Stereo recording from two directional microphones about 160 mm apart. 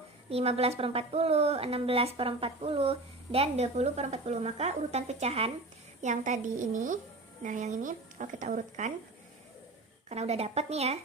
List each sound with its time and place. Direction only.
0.3 s a woman's voice: 40° right (ahead or behind)
10.0 s speech: 40° right (ahead or behind)